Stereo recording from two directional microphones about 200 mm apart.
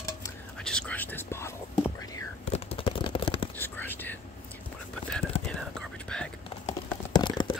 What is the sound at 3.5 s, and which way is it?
Whispering, 10° left (ahead or behind).